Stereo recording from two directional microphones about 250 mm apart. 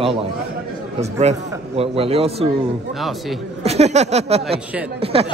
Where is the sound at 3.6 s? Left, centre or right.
Right.